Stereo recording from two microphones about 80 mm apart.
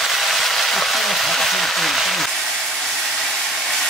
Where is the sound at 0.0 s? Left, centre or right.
Centre.